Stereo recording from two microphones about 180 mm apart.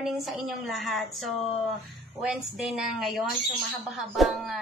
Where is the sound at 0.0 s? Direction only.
Centre (ahead or behind).